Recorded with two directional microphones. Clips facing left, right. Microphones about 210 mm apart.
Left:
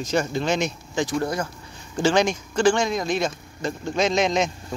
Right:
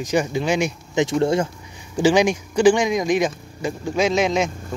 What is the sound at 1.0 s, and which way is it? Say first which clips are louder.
Speech: right 7 dB; 25° right (ahead or behind).